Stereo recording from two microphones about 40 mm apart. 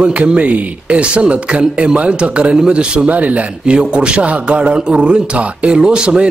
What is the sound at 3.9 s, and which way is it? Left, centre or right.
Speech, right.